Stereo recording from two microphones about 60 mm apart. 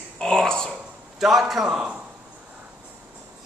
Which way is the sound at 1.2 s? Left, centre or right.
Centre.